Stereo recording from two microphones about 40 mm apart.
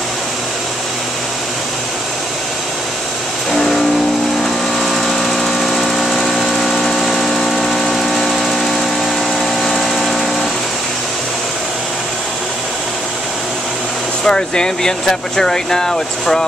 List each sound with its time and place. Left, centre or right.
3.5 s vehicle: centre
9.6 s a sound: centre
14.2 s speech: centre